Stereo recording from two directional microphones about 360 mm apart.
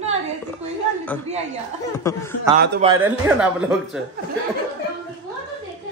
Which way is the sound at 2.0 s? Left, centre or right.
Centre.